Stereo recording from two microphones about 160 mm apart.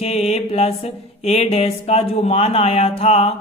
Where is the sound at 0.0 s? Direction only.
40° left (ahead or behind).